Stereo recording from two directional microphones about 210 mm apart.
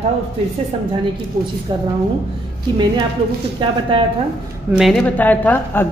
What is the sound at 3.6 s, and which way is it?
Speech, 25° right (ahead or behind).